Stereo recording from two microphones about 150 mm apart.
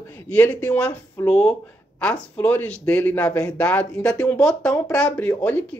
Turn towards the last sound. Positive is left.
turn(degrees=10)  # may be behind; listen again after turning